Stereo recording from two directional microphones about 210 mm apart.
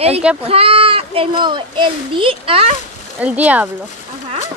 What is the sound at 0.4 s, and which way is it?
A child's voice, 25° right (ahead or behind).